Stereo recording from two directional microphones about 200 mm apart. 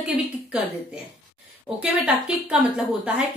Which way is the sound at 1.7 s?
5° right (ahead or behind).